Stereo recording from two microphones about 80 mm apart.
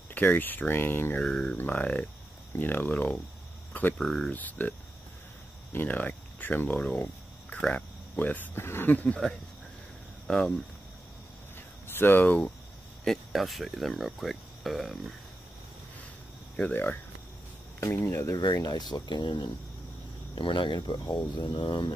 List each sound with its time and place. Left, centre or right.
0.1 s speech: left
1.2 s speech: centre
1.6 s speech: left
4.0 s speech: centre
4.3 s speech: left
10.2 s speech: centre
11.5 s a sound: left
13.0 s speech: centre
16.7 s speech: left
17.7 s speech: left
18.3 s speech: left
21.5 s speech: left